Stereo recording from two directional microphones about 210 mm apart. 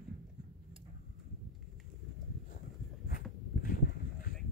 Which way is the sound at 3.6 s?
40° left (ahead or behind).